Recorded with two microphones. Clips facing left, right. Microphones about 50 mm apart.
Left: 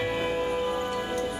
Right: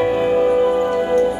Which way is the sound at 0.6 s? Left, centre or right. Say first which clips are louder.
Right 12 dB; right.